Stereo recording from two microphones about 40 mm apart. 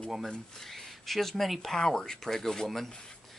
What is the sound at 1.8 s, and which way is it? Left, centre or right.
Speech, centre.